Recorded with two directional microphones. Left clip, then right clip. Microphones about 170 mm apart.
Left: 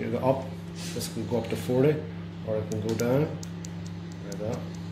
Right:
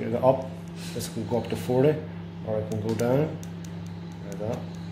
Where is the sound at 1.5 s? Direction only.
30° right (ahead or behind).